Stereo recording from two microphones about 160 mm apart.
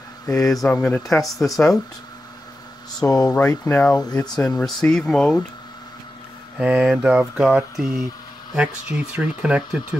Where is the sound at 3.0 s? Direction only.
20° left (ahead or behind); by 5.5 s 5° left (ahead or behind).